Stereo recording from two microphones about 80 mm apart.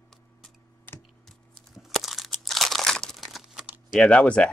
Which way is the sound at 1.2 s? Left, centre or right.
Centre.